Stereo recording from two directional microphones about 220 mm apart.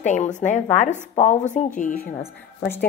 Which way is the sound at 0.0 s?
35° left (ahead or behind).